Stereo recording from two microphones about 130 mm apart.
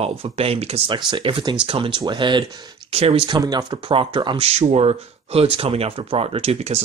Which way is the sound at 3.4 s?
30° right (ahead or behind).